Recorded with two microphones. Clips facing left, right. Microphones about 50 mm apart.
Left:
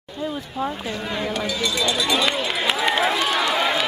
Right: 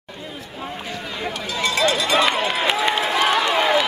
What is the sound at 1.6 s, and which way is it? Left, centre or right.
Run, right.